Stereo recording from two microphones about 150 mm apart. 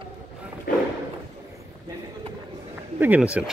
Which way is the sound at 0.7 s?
70° left (ahead or behind).